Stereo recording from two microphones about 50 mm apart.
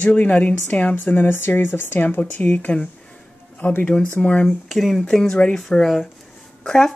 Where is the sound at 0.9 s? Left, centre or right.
Left.